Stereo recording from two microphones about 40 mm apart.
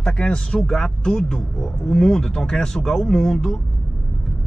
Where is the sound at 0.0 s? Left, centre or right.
Left.